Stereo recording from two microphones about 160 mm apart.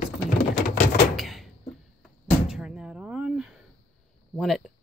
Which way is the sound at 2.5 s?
5° right (ahead or behind).